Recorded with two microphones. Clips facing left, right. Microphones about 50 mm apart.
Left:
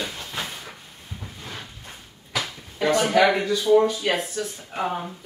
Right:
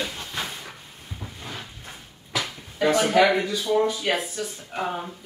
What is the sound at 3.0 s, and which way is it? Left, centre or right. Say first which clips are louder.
A woman's voice: left 1 dB; centre.